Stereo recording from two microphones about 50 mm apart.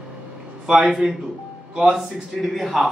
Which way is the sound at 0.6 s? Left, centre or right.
Centre.